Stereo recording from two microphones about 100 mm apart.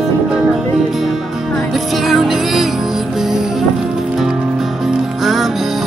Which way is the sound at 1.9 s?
Centre (ahead or behind).